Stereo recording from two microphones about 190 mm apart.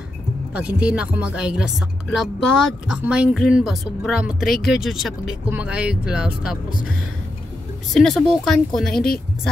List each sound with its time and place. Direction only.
0.6 s speech: 5° right (ahead or behind)
7.9 s speech: centre (ahead or behind)
8.9 s speech: 50° left (ahead or behind)